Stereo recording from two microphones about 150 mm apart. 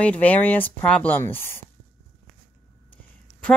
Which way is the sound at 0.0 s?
10° left (ahead or behind).